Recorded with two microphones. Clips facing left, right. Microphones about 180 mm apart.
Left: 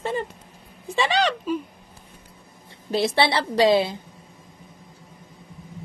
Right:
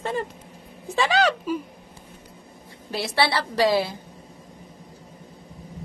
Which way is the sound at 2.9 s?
25° left (ahead or behind).